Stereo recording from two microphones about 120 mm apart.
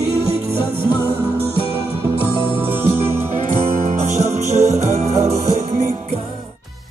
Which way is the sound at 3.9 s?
65° right (ahead or behind).